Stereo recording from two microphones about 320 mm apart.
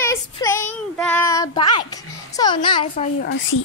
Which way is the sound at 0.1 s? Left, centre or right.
Centre.